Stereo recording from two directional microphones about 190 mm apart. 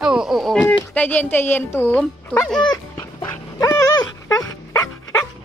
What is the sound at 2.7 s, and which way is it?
Dog, 20° left (ahead or behind).